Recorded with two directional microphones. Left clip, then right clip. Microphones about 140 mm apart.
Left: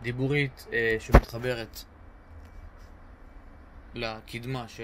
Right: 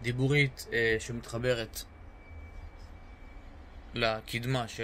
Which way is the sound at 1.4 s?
25° right (ahead or behind).